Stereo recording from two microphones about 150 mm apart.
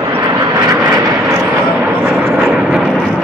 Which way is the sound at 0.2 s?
25° right (ahead or behind).